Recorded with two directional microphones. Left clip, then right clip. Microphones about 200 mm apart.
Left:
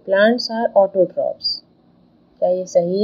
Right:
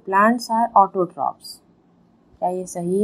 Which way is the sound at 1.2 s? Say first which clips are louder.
Left 3 dB; 35° right (ahead or behind).